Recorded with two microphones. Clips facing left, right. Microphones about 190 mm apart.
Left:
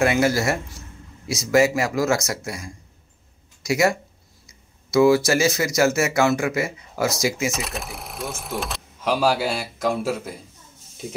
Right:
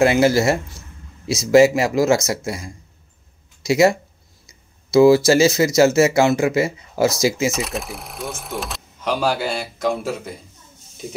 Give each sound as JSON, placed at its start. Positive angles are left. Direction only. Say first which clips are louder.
{"t": 0.0, "sound": "a man's voice", "louder": "right 5 dB", "side_deg": -30}
{"t": 7.5, "sound": "speech", "louder": "right 4 dB", "side_deg": 0}